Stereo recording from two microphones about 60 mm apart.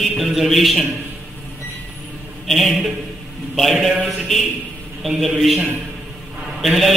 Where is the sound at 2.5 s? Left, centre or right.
Centre.